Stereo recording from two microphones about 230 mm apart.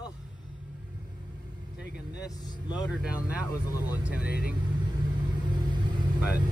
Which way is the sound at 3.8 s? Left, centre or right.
Centre.